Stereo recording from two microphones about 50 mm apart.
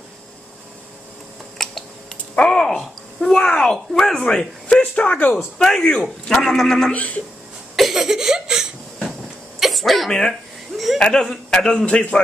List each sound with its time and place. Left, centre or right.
1.6 s typing: centre
2.3 s a sound: centre
4.2 s speech: centre
5.6 s a man's voice: centre
6.9 s a man's voice: left
7.7 s cough: centre
9.6 s throat clearing: centre
11.0 s a man's voice: centre
11.8 s a man's voice: left